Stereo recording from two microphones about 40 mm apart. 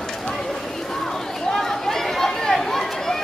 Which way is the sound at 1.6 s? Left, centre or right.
Centre.